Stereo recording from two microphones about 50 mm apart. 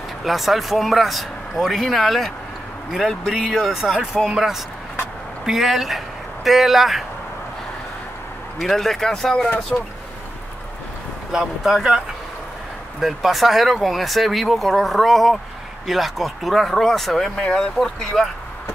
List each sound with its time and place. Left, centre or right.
0.2 s speech: centre
8.5 s speech: centre
9.7 s speech: left
11.3 s speech: centre
13.0 s speech: centre